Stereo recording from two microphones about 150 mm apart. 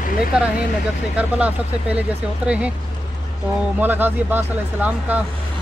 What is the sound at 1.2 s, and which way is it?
Speech, 10° right (ahead or behind).